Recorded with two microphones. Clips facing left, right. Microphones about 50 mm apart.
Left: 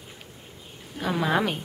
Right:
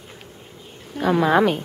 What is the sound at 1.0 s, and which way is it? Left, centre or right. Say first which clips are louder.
Speech: right 7 dB; centre.